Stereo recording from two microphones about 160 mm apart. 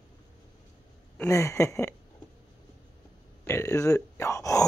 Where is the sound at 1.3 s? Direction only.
20° left (ahead or behind).